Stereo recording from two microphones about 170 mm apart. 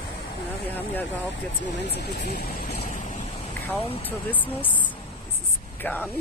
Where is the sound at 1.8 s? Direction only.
75° left (ahead or behind).